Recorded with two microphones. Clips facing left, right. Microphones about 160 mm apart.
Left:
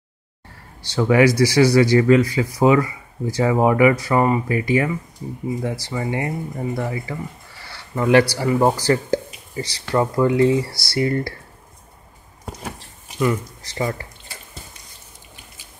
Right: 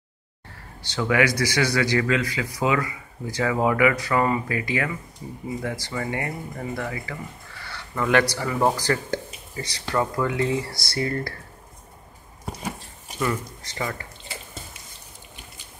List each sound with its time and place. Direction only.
0.9 s speech: 30° left (ahead or behind)
13.6 s speech: 30° left (ahead or behind)